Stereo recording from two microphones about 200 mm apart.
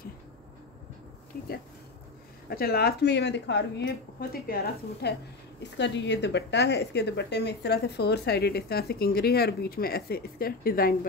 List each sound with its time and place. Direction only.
2.5 s a woman's voice: 50° left (ahead or behind)